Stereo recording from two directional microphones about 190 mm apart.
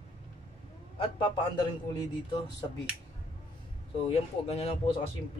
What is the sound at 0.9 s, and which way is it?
Speech, 25° left (ahead or behind).